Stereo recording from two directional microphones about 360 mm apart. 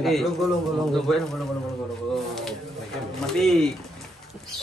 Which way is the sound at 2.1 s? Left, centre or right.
Centre.